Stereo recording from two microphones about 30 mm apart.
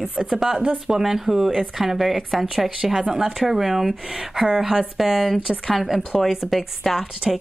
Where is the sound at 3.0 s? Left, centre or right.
Right.